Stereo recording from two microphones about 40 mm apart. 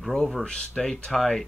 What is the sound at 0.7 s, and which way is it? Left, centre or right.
Speech, centre.